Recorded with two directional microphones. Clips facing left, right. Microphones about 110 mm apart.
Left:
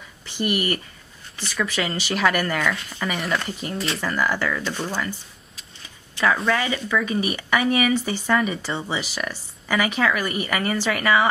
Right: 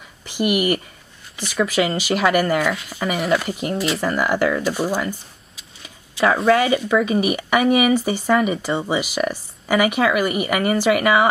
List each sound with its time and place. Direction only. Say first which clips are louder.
0.3 s speech: right 5 dB; 10° right (ahead or behind)
4.0 s speech: right 4 dB; 15° right (ahead or behind)
6.5 s speech: right 7 dB; 15° right (ahead or behind)